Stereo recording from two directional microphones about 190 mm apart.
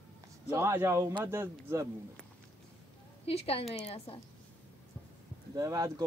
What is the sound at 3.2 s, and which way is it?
A woman's voice, 30° left (ahead or behind).